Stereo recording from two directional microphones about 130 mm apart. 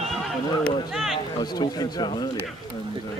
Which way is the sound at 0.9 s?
Centre (ahead or behind).